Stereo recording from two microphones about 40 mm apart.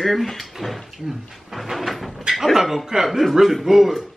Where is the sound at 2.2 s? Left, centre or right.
Centre.